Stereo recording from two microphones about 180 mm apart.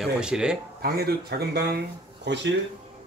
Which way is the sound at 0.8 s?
60° right (ahead or behind).